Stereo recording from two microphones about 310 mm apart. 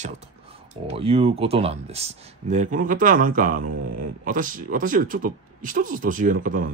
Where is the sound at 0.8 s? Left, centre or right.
Centre.